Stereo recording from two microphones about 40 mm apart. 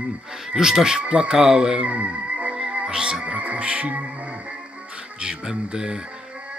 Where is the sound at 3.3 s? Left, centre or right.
Right.